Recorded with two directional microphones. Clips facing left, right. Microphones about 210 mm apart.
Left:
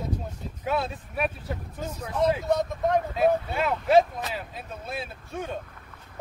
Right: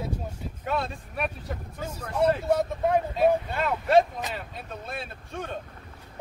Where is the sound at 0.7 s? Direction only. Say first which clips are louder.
Left 2 dB; 5° left (ahead or behind).